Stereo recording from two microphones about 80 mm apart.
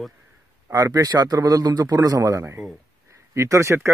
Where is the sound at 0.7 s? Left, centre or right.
Right.